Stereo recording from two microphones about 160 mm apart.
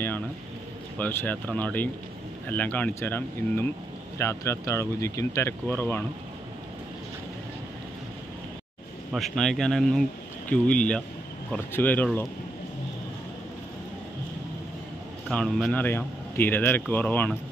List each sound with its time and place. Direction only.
0.9 s speech: 10° left (ahead or behind)
9.1 s speech: centre (ahead or behind)
15.2 s speech: centre (ahead or behind)